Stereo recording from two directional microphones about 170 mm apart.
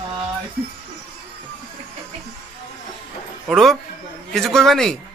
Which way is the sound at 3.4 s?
Centre (ahead or behind).